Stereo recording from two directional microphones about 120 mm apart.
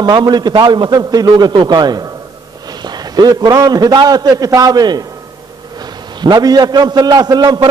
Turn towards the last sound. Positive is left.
turn(degrees=-35)  # may be behind; listen again after turning